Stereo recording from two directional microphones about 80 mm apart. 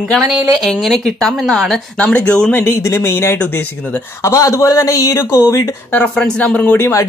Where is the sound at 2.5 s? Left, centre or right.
Left.